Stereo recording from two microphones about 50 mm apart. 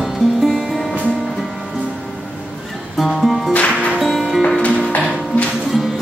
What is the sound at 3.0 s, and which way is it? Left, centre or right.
Music, centre.